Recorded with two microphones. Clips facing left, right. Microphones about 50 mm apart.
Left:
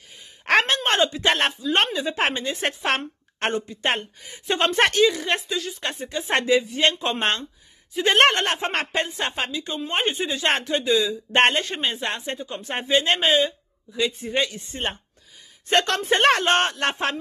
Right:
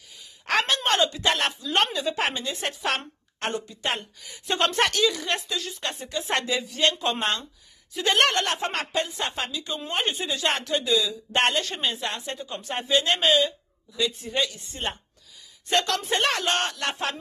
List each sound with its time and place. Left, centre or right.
0.5 s a sound: left
1.2 s a woman's voice: left
12.4 s speech: centre
12.6 s a woman's voice: left